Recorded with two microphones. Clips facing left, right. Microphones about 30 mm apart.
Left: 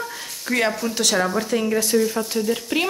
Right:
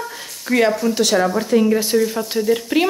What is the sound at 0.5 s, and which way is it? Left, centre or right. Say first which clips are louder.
Speech: right 5 dB; centre.